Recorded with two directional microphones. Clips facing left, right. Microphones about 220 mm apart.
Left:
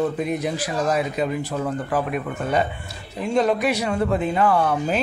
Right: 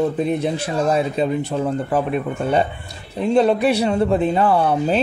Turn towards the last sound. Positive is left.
turn(degrees=-30)  # may be behind; listen again after turning